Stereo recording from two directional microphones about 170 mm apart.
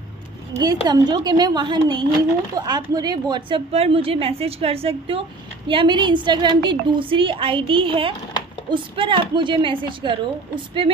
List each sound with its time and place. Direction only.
0.8 s a woman's voice: 25° right (ahead or behind)